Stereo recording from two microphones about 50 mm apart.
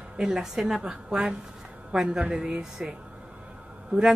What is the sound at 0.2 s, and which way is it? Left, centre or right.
A woman's voice, centre.